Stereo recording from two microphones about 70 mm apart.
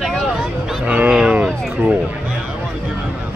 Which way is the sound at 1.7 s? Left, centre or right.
Right.